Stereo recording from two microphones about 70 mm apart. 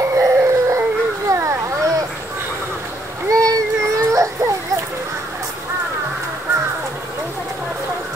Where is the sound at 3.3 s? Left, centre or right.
Right.